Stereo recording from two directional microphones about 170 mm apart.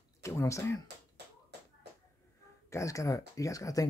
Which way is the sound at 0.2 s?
20° left (ahead or behind).